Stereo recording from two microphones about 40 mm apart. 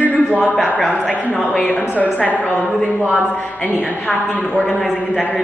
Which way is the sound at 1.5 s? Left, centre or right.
Left.